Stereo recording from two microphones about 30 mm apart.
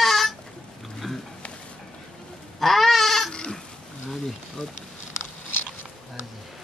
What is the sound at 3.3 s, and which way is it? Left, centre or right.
Goat, left.